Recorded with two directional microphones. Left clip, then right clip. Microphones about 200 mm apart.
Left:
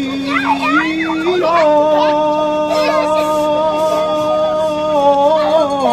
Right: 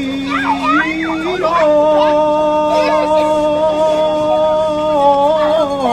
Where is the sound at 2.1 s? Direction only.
10° left (ahead or behind).